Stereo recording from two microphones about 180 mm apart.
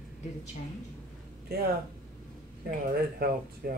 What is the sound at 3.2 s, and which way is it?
Speech, 60° right (ahead or behind).